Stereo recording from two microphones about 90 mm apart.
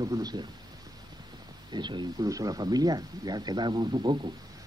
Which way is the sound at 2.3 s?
40° right (ahead or behind).